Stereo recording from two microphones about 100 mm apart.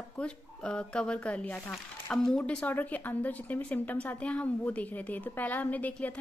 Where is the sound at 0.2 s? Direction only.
10° left (ahead or behind).